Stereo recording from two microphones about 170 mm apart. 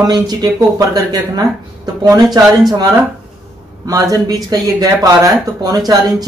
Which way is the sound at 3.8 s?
20° right (ahead or behind).